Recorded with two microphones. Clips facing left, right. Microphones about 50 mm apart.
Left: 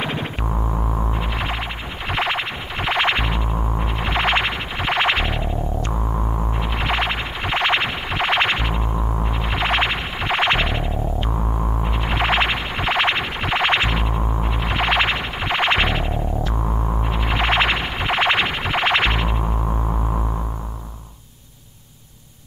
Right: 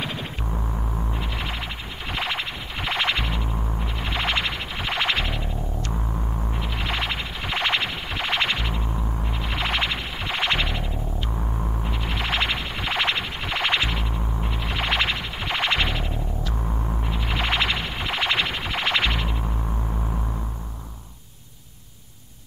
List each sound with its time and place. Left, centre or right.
0.0 s music: left
0.9 s a sound: left
2.0 s music: left